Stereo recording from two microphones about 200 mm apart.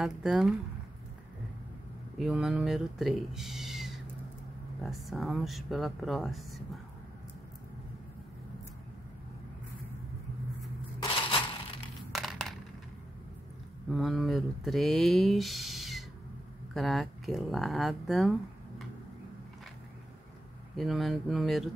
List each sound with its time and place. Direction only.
0.0 s speech: centre (ahead or behind)
2.1 s speech: 5° right (ahead or behind)
11.0 s a sound: 25° left (ahead or behind)
12.1 s a sound: centre (ahead or behind)
13.8 s speech: centre (ahead or behind)
20.7 s speech: centre (ahead or behind)